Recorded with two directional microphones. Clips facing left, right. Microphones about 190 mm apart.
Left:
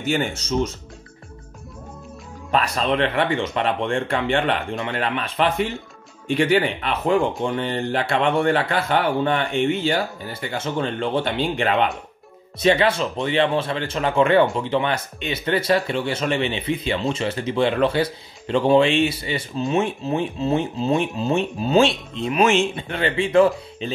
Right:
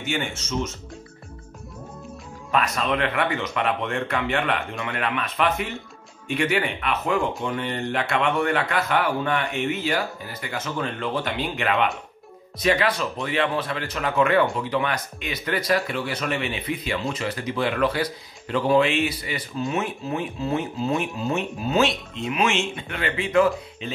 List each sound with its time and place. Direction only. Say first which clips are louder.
0.0 s speech: left 5 dB; 35° left (ahead or behind)
2.5 s speech: left 3 dB; 30° left (ahead or behind)